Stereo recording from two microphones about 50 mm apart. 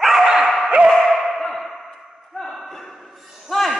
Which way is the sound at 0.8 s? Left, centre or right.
Centre.